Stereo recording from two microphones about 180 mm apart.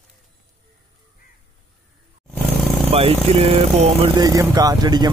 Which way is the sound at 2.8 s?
30° right (ahead or behind).